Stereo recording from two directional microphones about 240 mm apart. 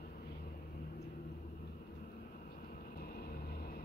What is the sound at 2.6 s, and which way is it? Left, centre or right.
Vehicle, left.